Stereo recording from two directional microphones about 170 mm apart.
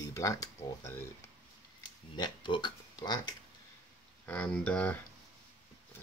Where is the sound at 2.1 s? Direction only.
25° left (ahead or behind).